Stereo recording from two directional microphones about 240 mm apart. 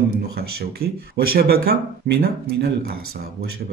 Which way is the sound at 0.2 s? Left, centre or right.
Right.